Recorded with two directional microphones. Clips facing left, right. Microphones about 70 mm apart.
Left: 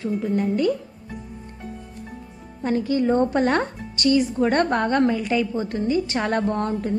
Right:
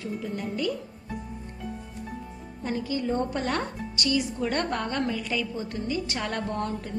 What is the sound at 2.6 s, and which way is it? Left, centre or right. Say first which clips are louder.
A woman's voice: left 8 dB; left.